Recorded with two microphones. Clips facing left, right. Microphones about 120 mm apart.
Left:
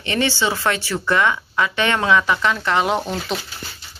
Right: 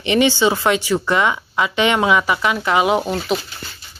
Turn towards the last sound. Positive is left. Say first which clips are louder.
# right 4 dB
turn(degrees=-5)  # may be behind; listen again after turning